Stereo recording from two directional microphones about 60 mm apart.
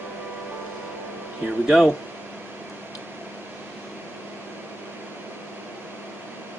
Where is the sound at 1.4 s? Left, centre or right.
Centre.